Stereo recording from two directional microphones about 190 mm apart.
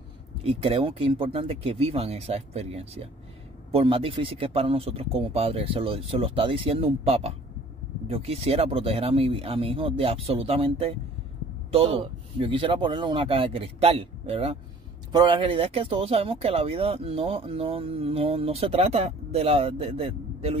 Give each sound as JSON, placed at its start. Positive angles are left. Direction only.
{"t": 0.4, "sound": "speech", "side_deg": -30}